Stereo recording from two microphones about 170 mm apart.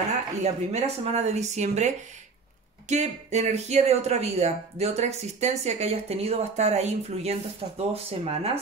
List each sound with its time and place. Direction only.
0.4 s speech: 40° right (ahead or behind)